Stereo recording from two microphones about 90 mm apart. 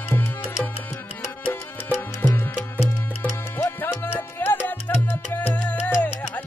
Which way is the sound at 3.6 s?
30° left (ahead or behind).